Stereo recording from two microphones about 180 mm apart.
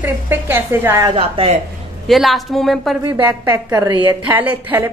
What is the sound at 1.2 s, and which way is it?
Speech, 30° right (ahead or behind).